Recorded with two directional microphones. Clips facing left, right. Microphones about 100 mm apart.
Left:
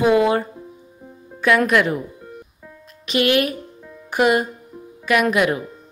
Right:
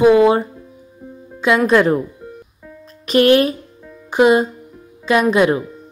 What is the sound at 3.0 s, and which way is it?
Speech, 40° right (ahead or behind).